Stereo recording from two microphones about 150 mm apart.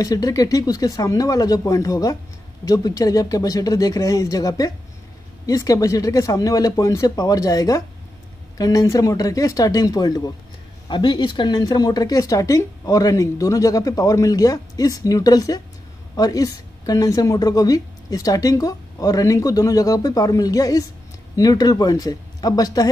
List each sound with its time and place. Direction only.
0.0 s speech: 25° left (ahead or behind)